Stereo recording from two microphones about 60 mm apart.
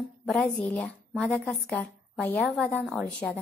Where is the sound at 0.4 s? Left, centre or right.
Left.